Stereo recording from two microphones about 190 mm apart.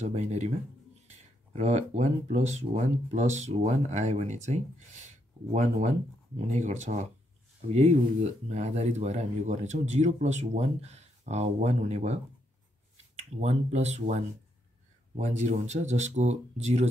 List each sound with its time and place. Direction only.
0.0 s speech: 35° right (ahead or behind)